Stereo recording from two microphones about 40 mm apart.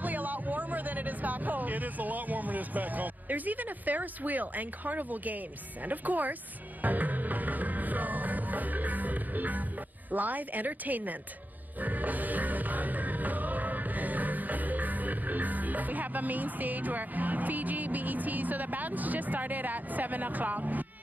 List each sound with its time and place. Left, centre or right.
0.0 s a woman's voice: right
6.8 s music: right
10.1 s a woman's voice: right
11.8 s music: right